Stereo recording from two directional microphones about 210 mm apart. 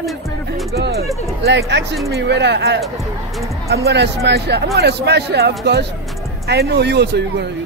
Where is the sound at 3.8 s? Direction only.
55° right (ahead or behind).